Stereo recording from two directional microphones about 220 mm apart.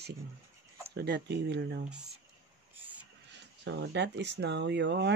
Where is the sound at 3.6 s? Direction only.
50° right (ahead or behind).